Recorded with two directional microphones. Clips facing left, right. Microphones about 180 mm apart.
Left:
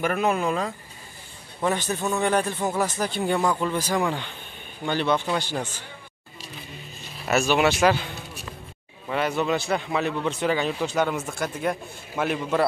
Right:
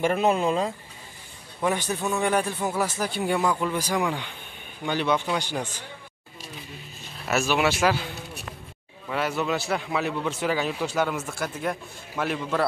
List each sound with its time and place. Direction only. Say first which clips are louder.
0.0 s speech: right 1 dB; 25° right (ahead or behind)
1.6 s speech: left 1 dB; 10° right (ahead or behind)
7.2 s a man's voice: left 3 dB; centre (ahead or behind)
9.1 s a man's voice: left 2 dB; 5° right (ahead or behind)